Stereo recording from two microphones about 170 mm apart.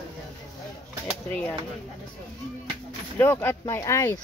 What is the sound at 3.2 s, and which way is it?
Speech, 15° left (ahead or behind).